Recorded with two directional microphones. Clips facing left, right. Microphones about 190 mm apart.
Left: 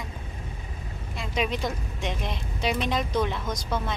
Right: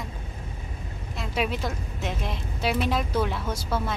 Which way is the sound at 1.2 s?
5° right (ahead or behind).